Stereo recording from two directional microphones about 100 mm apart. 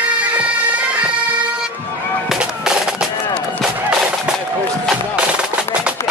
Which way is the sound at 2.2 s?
5° right (ahead or behind).